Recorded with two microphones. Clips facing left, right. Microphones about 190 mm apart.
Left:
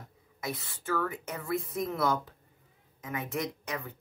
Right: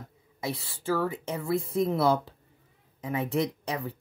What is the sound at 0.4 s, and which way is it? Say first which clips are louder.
Speech: right 4 dB; 30° right (ahead or behind).